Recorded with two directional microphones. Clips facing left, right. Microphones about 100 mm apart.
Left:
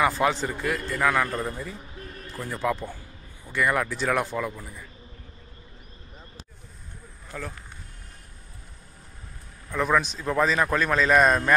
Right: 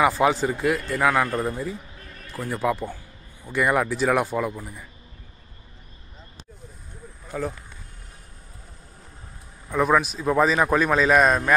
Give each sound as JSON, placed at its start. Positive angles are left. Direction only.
{"t": 0.0, "sound": "a man's voice", "side_deg": -15}
{"t": 7.2, "sound": "speech", "side_deg": -15}
{"t": 9.7, "sound": "a man's voice", "side_deg": -10}